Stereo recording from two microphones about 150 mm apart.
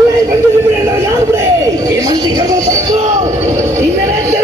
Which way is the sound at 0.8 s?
20° right (ahead or behind).